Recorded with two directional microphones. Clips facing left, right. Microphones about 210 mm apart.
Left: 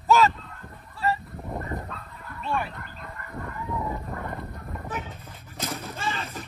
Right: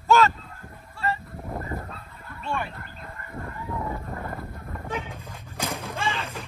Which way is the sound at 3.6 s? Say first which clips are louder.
Even; centre (ahead or behind).